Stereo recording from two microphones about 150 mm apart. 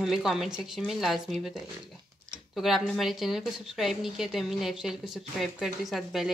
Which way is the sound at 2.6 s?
Centre (ahead or behind).